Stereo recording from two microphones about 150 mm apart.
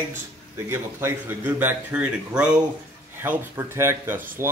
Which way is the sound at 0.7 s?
15° right (ahead or behind).